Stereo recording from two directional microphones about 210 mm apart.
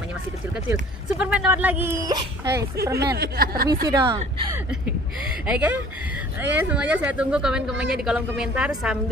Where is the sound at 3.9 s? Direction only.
20° right (ahead or behind).